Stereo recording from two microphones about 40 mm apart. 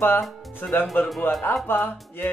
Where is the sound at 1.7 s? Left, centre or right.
Left.